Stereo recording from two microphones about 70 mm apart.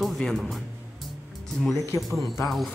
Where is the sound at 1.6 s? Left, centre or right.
Centre.